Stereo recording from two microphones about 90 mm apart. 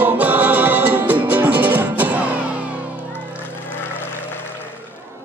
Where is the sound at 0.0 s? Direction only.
20° right (ahead or behind).